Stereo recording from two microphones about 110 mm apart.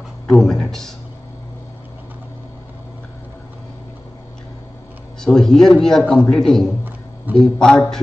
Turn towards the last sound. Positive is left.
turn(degrees=5)  # may be behind; listen again after turning